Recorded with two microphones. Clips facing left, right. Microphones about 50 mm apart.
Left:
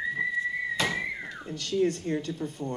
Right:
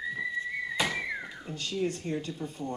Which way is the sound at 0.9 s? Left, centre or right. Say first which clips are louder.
Left 2 dB; centre.